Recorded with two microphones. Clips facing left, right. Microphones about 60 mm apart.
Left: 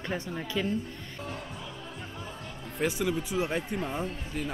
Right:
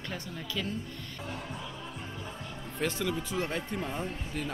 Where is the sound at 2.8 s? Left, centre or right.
Centre.